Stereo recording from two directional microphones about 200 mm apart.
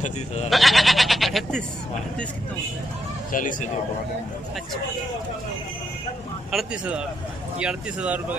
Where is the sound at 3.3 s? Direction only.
40° left (ahead or behind).